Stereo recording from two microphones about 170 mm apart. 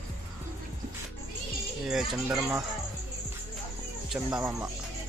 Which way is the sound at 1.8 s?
Centre (ahead or behind).